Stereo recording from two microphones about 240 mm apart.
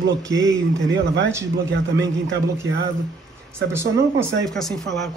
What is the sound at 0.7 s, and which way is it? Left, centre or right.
A man's voice, right.